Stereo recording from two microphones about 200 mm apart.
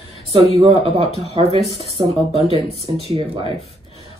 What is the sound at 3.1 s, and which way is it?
Speech, 25° right (ahead or behind).